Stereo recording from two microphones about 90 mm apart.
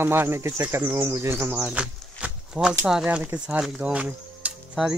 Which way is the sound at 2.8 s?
10° right (ahead or behind).